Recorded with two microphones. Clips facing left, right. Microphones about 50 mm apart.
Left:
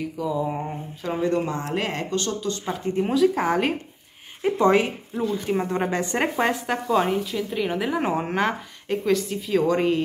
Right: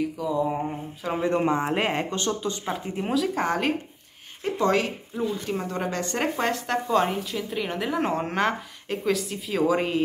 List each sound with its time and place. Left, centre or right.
0.0 s a woman's voice: centre
1.1 s speech: centre
2.6 s a woman's voice: centre
4.4 s a woman's voice: centre